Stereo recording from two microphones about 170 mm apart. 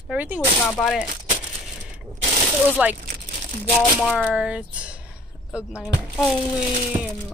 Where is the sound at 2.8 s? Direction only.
5° right (ahead or behind).